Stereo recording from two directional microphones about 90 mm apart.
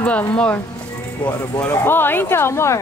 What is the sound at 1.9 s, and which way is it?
Speech, 25° left (ahead or behind).